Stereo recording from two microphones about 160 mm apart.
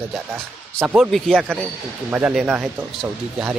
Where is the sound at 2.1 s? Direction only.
10° right (ahead or behind).